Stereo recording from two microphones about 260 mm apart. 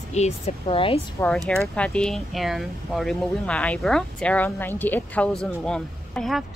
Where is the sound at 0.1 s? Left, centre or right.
Left.